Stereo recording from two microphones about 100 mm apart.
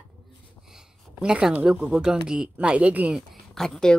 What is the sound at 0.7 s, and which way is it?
A woman's voice, 10° right (ahead or behind).